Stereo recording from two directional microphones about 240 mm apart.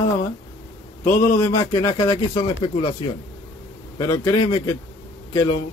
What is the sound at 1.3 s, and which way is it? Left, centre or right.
Speech, centre.